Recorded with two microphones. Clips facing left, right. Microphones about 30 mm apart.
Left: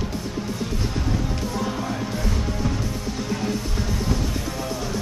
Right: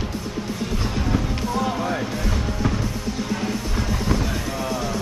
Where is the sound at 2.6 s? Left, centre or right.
Right.